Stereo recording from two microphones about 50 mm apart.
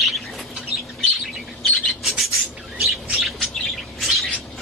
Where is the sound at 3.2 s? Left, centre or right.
Centre.